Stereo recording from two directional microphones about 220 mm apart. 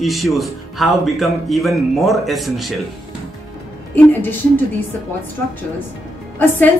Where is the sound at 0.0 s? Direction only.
Centre (ahead or behind).